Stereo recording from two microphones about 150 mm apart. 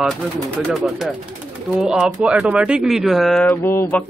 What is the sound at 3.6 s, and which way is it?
Music, 15° left (ahead or behind).